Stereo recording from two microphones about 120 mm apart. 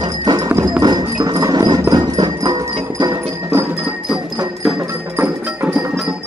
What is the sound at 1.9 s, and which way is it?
Music, 35° right (ahead or behind).